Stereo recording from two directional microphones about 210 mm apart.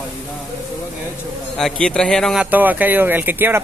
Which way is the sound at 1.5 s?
5° left (ahead or behind).